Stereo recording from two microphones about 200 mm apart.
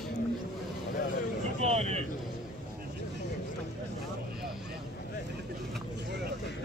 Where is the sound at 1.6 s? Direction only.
30° right (ahead or behind).